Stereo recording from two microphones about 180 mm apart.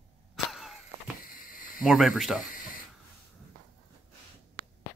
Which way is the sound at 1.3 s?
50° left (ahead or behind).